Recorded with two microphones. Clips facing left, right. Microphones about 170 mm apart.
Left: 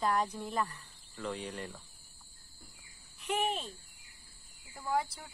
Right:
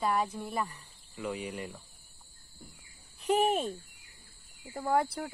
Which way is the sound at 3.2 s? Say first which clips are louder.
Right 7 dB; 40° right (ahead or behind).